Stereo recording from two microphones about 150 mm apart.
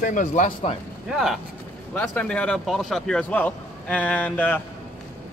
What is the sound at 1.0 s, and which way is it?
Speech, centre (ahead or behind).